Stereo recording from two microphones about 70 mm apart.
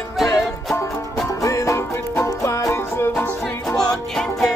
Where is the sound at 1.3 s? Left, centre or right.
Left.